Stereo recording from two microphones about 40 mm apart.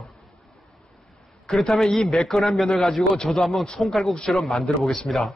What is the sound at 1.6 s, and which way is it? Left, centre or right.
Speech, centre.